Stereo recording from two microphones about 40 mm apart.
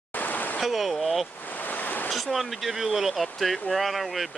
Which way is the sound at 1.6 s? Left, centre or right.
Left.